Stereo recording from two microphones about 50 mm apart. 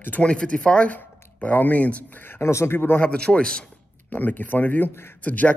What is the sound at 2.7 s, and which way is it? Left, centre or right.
Speech, left.